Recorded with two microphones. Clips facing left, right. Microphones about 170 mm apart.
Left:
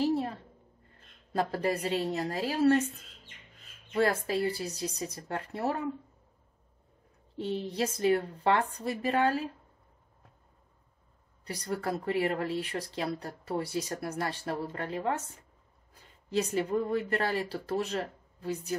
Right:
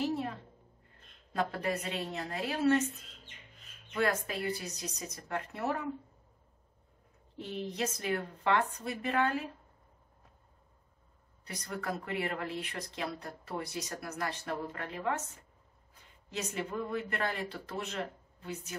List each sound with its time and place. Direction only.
0.0 s a sound: 35° left (ahead or behind)
1.3 s speech: 35° left (ahead or behind)
3.9 s speech: 35° left (ahead or behind)
7.3 s speech: 30° left (ahead or behind)
11.4 s speech: 35° left (ahead or behind)